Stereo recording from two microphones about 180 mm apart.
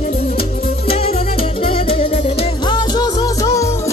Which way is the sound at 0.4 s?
35° left (ahead or behind).